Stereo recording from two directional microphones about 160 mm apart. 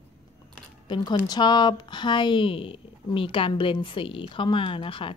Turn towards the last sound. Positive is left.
turn(degrees=35)  # may be behind; listen again after turning